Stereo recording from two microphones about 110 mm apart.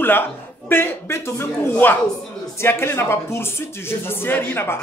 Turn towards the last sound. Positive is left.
turn(degrees=20)  # may be behind; listen again after turning